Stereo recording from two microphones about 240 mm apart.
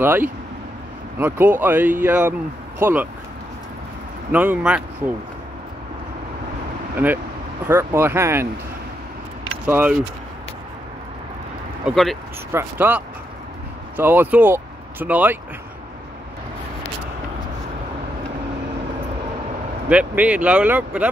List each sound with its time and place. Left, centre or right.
0.0 s speech: centre
4.3 s speech: centre
7.6 s speech: centre
9.7 s speech: centre
11.8 s speech: centre
19.9 s speech: centre